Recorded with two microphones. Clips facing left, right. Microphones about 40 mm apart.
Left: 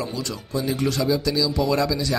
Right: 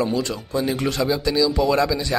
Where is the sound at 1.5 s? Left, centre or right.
Centre.